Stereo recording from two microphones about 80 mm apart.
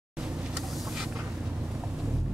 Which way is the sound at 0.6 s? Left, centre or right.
Centre.